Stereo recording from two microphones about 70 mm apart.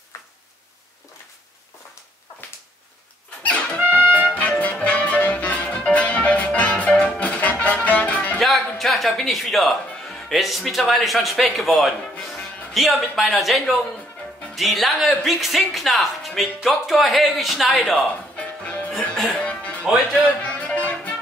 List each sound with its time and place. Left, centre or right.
3.4 s music: centre
3.7 s music: right
4.4 s music: left
8.4 s music: centre
10.0 s speech: centre
18.0 s music: centre